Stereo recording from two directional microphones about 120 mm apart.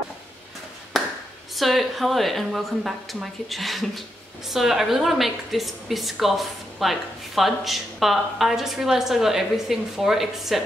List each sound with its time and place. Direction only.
1.6 s a woman's voice: centre (ahead or behind)